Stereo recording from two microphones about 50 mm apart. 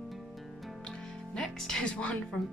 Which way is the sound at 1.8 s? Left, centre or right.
Left.